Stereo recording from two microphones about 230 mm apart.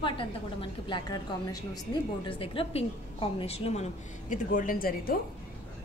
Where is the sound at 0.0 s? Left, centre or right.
Left.